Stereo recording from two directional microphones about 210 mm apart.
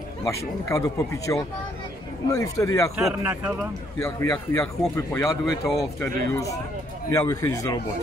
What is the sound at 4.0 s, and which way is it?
Speech, 15° left (ahead or behind).